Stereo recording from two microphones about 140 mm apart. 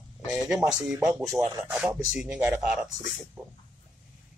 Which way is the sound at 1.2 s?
20° right (ahead or behind).